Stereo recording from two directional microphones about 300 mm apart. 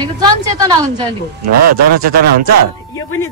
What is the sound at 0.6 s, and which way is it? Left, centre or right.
Speech, centre.